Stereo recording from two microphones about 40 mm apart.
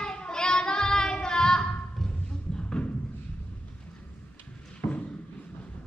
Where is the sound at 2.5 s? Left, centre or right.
Left.